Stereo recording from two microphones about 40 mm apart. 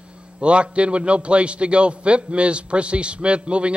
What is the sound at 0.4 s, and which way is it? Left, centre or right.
A man's voice, right.